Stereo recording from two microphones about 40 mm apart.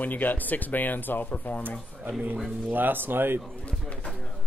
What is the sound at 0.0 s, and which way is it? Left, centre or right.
Speech, left.